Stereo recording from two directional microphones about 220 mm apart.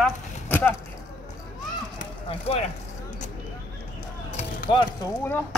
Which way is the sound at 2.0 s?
25° left (ahead or behind).